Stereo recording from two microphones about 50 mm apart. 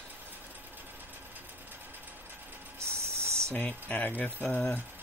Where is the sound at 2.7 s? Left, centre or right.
Right.